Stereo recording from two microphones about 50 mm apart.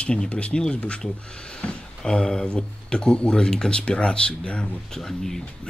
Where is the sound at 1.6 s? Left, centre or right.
Left.